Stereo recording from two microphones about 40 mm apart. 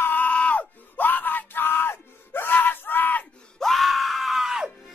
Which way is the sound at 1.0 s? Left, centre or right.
Left.